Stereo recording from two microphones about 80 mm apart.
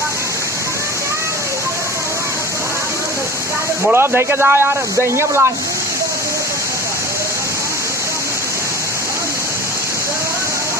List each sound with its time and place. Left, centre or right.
3.9 s speech: right